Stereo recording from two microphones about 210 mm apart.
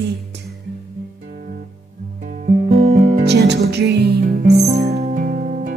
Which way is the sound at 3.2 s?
50° right (ahead or behind).